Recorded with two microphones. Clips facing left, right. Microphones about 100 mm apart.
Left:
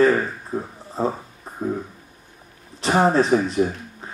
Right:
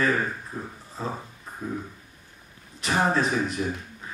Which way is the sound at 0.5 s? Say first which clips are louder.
Left 9 dB; 35° left (ahead or behind).